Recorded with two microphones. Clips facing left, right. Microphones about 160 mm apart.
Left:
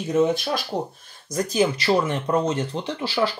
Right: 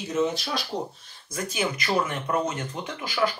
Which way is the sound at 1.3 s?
35° left (ahead or behind).